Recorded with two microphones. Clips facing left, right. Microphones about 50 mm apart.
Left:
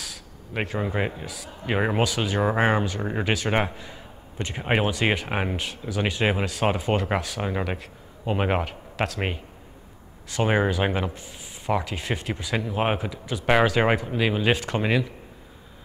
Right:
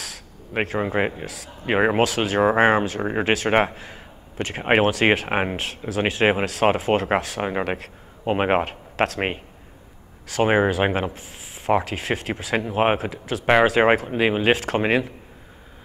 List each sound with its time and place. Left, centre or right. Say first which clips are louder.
0.0 s a sound: right 2 dB; right
0.7 s speech: right 4 dB; right
1.2 s speech: right 2 dB; right
1.7 s speech: right 5 dB; right
2.0 s speech: right 4 dB; right
2.4 s speech: right 5 dB; right
3.3 s speech: right 5 dB; right
3.7 s a man's voice: right 1 dB; right
5.3 s speech: right 4 dB; right
5.6 s speech: right 3 dB; right
10.4 s speech: right 4 dB; right
10.7 s speech: right 3 dB; right
13.7 s speech: right 4 dB; right